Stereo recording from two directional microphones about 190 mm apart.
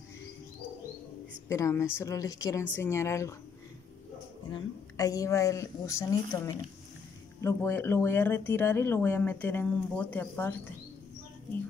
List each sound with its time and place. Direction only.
1.5 s speech: 15° left (ahead or behind)
4.5 s speech: 20° left (ahead or behind)